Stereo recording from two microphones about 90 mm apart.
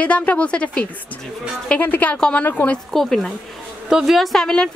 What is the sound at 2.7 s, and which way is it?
A woman's voice, 5° left (ahead or behind).